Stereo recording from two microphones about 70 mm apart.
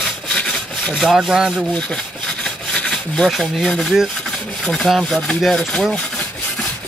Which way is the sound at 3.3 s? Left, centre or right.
Centre.